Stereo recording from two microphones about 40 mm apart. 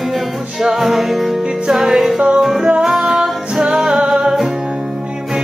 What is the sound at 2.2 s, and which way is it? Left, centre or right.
Music, right.